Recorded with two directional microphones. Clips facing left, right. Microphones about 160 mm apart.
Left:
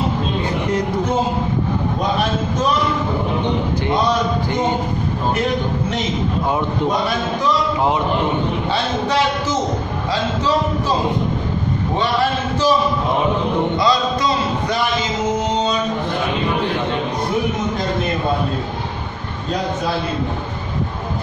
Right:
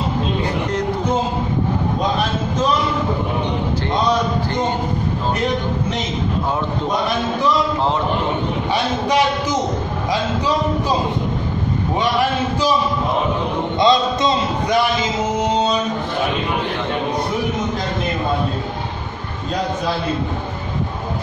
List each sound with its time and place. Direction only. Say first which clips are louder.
9.0 s a man's voice: right 1 dB; 15° right (ahead or behind)
12.0 s a man's voice: right 1 dB; 15° right (ahead or behind)
13.7 s a man's voice: right 2 dB; 25° right (ahead or behind)